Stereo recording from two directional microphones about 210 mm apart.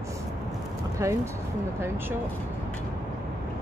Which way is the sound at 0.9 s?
15° right (ahead or behind).